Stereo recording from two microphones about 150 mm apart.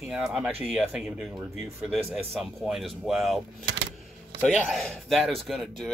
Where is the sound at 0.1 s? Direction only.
5° right (ahead or behind).